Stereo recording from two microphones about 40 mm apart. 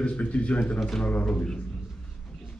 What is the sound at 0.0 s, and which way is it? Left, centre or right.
A man's voice, left.